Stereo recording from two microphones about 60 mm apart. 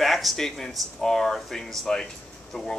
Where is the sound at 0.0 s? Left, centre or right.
Centre.